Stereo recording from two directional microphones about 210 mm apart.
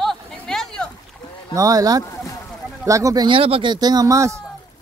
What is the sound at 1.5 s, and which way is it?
Speech, 15° right (ahead or behind).